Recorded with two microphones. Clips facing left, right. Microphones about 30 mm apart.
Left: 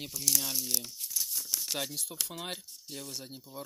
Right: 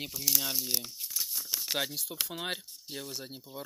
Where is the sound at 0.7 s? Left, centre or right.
Centre.